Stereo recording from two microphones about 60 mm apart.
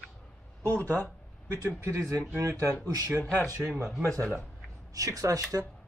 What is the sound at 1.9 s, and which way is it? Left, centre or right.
Speech, right.